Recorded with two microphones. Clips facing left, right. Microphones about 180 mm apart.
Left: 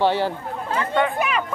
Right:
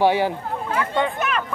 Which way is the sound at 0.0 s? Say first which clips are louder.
Right 2 dB; 10° right (ahead or behind).